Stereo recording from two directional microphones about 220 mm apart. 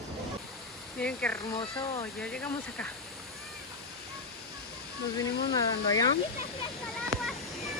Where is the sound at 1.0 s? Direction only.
5° left (ahead or behind).